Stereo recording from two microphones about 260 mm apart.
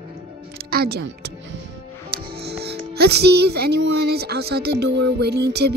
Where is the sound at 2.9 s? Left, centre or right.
Right.